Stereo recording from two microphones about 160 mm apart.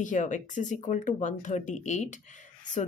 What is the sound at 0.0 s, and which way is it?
A woman's voice, 50° left (ahead or behind).